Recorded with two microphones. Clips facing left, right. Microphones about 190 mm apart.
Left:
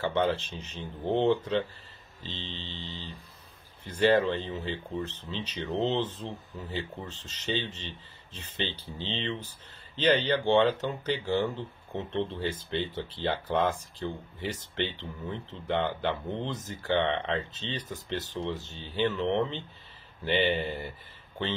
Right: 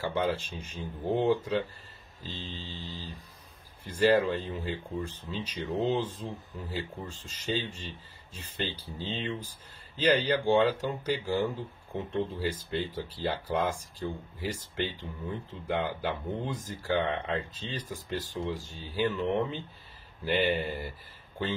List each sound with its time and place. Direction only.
0.0 s speech: 10° right (ahead or behind)
3.8 s speech: 10° right (ahead or behind)